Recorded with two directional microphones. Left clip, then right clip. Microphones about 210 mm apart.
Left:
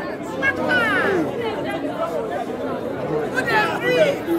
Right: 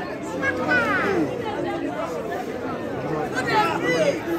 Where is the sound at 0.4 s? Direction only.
40° left (ahead or behind).